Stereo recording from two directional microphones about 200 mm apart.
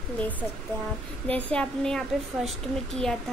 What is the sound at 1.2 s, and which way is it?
A woman's voice, 5° left (ahead or behind).